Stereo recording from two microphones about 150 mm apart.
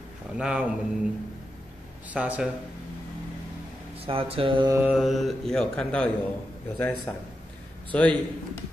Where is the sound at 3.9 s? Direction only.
40° right (ahead or behind).